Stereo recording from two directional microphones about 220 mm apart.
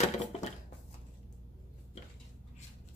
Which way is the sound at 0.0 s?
30° left (ahead or behind).